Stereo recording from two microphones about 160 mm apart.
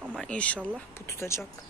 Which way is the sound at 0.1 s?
5° left (ahead or behind).